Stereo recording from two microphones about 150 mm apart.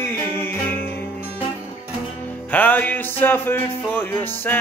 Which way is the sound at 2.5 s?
10° left (ahead or behind).